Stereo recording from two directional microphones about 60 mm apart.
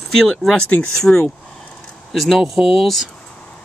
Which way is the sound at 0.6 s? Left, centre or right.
Left.